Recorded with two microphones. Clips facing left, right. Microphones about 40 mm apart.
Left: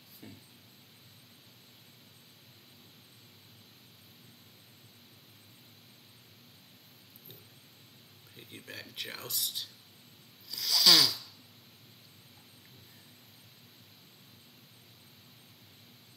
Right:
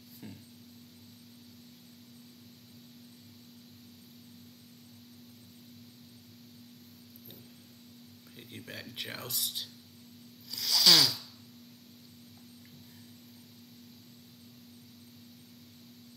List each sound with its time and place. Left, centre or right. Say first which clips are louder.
0.2 s speech: right 3 dB; centre
8.4 s speech: right 1 dB; centre
10.5 s a sound: even; centre